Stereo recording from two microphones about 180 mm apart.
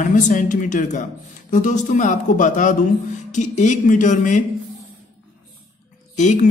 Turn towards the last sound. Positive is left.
turn(degrees=45)  # may be behind; listen again after turning